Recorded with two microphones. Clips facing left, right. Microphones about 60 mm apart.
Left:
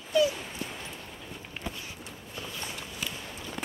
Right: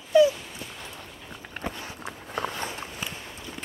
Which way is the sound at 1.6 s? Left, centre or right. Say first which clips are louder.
Right 7 dB; right.